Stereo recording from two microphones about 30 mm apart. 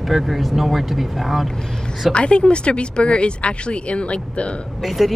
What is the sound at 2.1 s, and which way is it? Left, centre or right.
Speech, left.